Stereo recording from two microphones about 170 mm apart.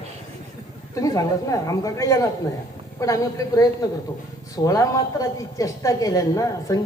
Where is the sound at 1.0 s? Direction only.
20° left (ahead or behind).